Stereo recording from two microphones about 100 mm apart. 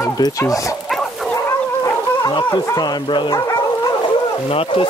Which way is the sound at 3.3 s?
40° left (ahead or behind).